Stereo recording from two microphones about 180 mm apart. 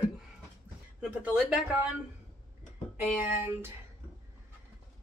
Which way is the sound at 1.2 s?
5° right (ahead or behind).